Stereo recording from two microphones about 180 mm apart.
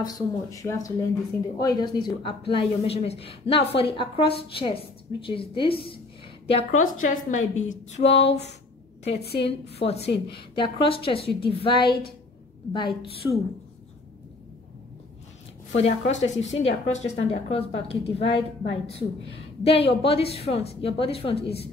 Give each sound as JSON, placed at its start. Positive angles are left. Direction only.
{"t": 0.0, "sound": "a woman's voice", "side_deg": 20}
{"t": 6.5, "sound": "a woman's voice", "side_deg": 45}
{"t": 9.0, "sound": "a woman's voice", "side_deg": 65}
{"t": 9.7, "sound": "a woman's voice", "side_deg": 35}
{"t": 10.0, "sound": "a woman's voice", "side_deg": 65}
{"t": 10.5, "sound": "a woman's voice", "side_deg": 30}
{"t": 15.7, "sound": "a woman's voice", "side_deg": 40}
{"t": 21.4, "sound": "a woman's voice", "side_deg": 65}